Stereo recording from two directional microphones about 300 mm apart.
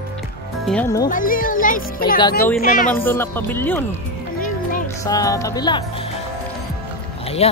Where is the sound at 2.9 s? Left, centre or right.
Centre.